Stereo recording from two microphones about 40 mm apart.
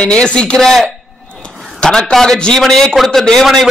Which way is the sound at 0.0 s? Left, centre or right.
Left.